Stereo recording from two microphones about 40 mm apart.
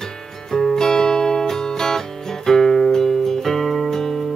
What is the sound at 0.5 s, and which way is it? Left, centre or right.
Music, centre.